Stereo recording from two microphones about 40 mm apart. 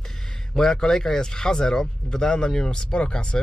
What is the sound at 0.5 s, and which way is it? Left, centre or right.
Speech, centre.